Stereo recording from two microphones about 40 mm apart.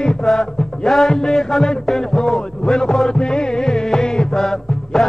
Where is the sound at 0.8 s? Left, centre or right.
Centre.